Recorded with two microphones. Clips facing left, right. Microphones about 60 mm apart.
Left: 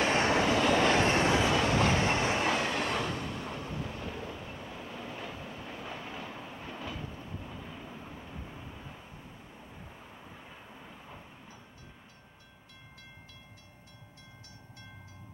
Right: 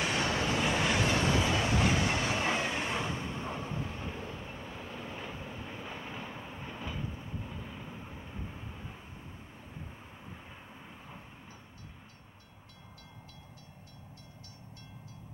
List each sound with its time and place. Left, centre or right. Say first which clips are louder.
0.0 s vehicle: left 5 dB; left
2.4 s vehicle: left 2 dB; centre